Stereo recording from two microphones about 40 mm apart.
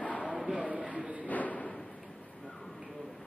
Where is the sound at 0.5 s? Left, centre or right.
Right.